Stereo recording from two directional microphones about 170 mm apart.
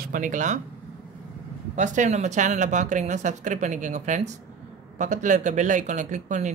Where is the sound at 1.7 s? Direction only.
45° right (ahead or behind).